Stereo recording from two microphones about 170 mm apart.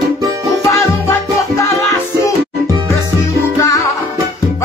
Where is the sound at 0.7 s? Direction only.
15° left (ahead or behind).